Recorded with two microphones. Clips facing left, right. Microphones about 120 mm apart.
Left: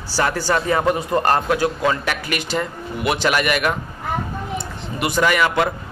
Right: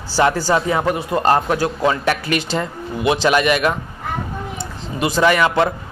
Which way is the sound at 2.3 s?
25° right (ahead or behind).